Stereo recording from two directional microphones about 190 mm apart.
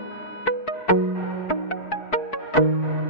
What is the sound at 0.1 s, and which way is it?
Music, 90° left.